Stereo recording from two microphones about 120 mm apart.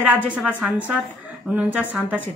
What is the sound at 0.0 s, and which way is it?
Speech, 10° right (ahead or behind).